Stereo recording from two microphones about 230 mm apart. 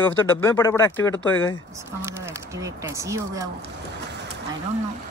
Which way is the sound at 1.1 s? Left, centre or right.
Left.